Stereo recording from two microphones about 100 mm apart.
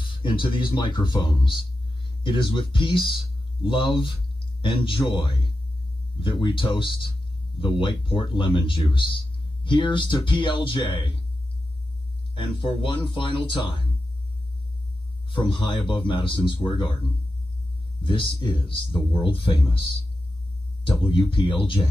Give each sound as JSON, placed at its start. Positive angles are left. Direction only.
{"t": 0.0, "sound": "speech", "side_deg": 55}
{"t": 12.4, "sound": "speech", "side_deg": 55}
{"t": 15.2, "sound": "speech", "side_deg": 55}
{"t": 18.0, "sound": "speech", "side_deg": 55}
{"t": 20.8, "sound": "speech", "side_deg": 55}